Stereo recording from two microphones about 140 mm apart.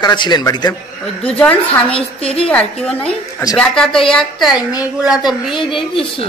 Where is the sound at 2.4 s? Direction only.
5° left (ahead or behind).